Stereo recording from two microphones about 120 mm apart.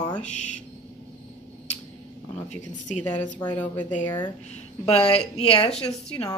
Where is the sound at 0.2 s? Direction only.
80° left.